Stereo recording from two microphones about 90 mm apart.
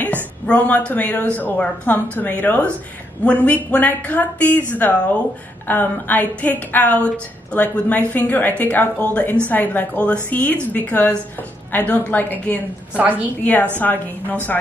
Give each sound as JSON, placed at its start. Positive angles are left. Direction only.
{"t": 0.5, "sound": "a woman's voice", "side_deg": 15}
{"t": 12.9, "sound": "a woman's voice", "side_deg": -15}
{"t": 13.4, "sound": "a woman's voice", "side_deg": 20}